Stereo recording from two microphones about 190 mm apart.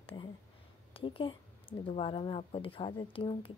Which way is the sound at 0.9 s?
25° left (ahead or behind).